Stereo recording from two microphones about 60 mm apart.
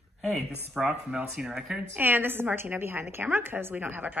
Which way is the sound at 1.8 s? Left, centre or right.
Right.